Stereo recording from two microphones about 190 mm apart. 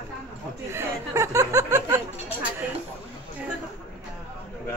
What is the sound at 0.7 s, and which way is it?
Speech, 15° right (ahead or behind).